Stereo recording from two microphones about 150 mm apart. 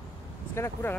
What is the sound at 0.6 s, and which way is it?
Speech, 15° left (ahead or behind).